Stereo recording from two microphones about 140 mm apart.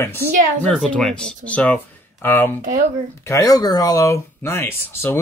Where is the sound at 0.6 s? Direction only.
5° left (ahead or behind).